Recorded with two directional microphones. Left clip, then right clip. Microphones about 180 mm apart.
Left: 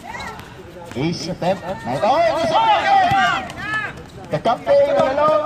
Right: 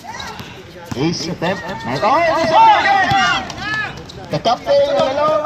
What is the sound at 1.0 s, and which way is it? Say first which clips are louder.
A man's voice: right 2 dB; 40° left (ahead or behind).